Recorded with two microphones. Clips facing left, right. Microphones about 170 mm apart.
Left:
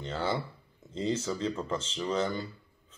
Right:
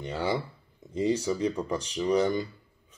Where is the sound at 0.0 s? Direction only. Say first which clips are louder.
Right 2 dB; 15° right (ahead or behind).